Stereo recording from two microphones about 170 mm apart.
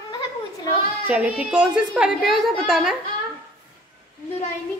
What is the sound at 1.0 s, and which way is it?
A woman's voice, 10° right (ahead or behind).